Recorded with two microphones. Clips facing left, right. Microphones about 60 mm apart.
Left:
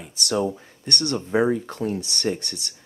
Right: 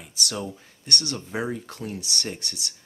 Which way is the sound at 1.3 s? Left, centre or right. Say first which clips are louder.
Left 9 dB; left.